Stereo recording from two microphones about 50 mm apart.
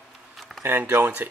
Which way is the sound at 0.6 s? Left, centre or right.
Right.